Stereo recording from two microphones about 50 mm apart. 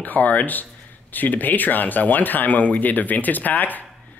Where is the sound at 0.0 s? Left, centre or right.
Left.